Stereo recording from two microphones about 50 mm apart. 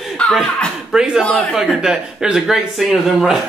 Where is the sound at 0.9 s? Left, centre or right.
Centre.